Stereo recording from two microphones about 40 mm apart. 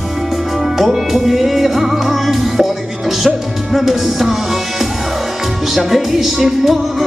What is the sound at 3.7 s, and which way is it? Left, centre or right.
Music, centre.